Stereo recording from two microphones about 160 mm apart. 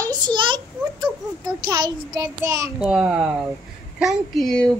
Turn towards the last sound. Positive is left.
turn(degrees=5)  # may be behind; listen again after turning